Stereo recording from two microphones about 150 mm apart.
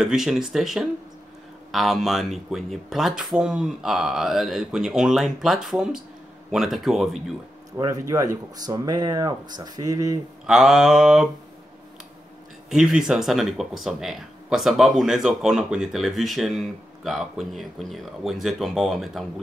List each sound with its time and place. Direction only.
0.0 s speech: centre (ahead or behind)
7.7 s speech: 20° right (ahead or behind)
10.4 s speech: 5° right (ahead or behind)
12.6 s speech: 5° right (ahead or behind)